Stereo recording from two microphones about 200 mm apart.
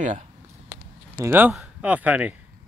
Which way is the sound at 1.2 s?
10° right (ahead or behind).